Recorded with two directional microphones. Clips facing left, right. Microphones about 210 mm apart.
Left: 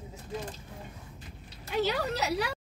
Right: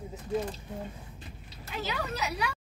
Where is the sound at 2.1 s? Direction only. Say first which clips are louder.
Left 3 dB; 65° left (ahead or behind).